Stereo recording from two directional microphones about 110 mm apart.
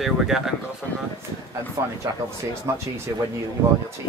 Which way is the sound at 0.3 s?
5° right (ahead or behind).